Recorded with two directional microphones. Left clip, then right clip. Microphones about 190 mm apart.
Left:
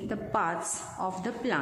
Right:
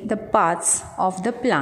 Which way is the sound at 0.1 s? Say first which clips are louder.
Right 11 dB; 35° right (ahead or behind).